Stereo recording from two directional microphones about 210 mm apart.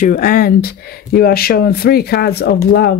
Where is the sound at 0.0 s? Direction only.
40° left (ahead or behind).